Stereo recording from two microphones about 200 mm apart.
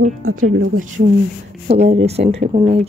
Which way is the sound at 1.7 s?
30° right (ahead or behind).